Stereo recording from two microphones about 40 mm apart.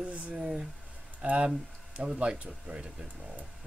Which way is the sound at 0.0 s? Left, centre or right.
Right.